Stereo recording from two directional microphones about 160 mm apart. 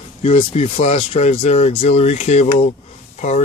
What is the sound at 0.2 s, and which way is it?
Speech, 35° left (ahead or behind).